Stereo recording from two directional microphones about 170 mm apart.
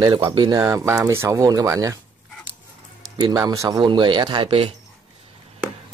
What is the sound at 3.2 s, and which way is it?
Speech, 25° right (ahead or behind).